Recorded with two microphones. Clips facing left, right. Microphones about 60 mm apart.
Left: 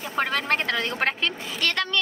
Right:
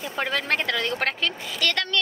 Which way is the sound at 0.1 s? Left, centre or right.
Left.